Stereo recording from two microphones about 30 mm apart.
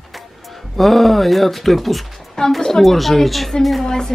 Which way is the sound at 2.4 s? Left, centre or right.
Centre.